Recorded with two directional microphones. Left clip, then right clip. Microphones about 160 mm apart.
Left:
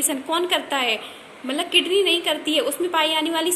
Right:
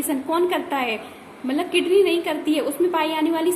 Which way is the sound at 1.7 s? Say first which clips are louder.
Even; 45° right (ahead or behind).